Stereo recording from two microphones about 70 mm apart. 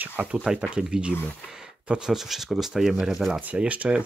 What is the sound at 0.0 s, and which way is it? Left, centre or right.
Speech, right.